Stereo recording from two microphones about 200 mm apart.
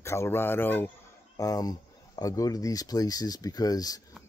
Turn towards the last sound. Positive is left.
turn(degrees=20)  # may be behind; listen again after turning